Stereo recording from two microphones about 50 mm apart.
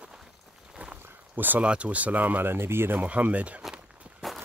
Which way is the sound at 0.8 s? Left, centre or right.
Right.